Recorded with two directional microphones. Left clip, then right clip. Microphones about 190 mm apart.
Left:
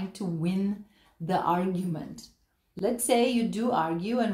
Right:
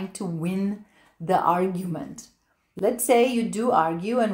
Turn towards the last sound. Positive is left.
turn(degrees=-15)  # may be behind; listen again after turning